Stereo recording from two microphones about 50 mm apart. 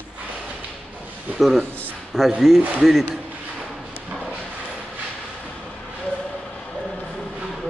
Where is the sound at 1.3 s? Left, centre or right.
Centre.